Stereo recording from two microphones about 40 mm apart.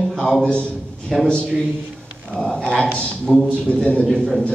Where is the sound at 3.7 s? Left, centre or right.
Left.